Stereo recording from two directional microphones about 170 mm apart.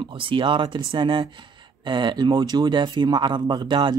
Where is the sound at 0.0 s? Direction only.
30° right (ahead or behind).